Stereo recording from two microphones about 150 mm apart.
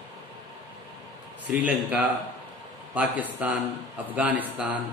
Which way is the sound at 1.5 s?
10° right (ahead or behind).